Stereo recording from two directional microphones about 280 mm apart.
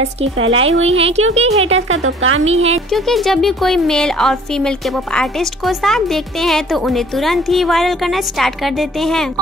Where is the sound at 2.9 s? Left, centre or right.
Centre.